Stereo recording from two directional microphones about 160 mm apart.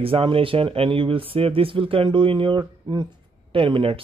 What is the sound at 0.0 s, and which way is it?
Speech, 35° right (ahead or behind).